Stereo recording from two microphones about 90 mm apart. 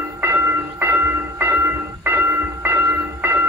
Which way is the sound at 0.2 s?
25° right (ahead or behind).